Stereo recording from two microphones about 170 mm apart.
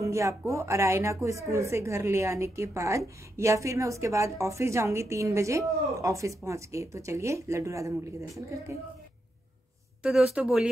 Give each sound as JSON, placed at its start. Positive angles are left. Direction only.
{"t": 0.0, "sound": "a woman's voice", "side_deg": -15}
{"t": 10.0, "sound": "speech", "side_deg": -5}